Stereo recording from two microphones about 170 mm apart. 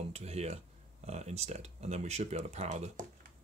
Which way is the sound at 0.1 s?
40° right (ahead or behind).